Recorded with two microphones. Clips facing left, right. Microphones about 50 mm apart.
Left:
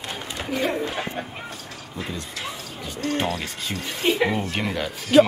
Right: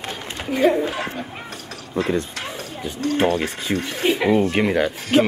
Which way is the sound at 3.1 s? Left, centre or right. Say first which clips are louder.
Right 9 dB; right.